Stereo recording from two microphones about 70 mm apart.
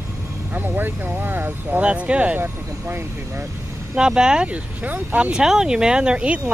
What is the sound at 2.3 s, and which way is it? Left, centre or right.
Speech, right.